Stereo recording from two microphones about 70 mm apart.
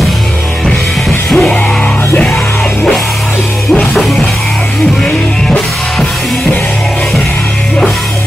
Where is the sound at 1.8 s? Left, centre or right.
Left.